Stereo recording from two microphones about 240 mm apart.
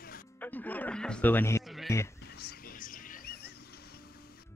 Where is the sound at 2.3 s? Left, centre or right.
Left.